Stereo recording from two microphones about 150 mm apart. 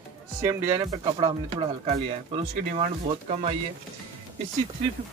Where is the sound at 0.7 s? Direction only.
30° right (ahead or behind); by 3.6 s 45° right (ahead or behind).